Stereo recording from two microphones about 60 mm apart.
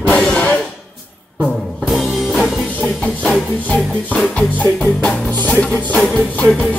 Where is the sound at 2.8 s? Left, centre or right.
Left.